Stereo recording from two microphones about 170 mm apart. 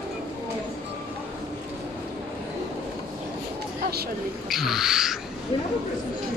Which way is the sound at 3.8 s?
65° right (ahead or behind).